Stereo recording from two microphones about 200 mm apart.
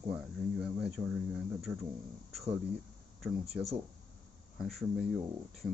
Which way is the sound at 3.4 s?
30° right (ahead or behind).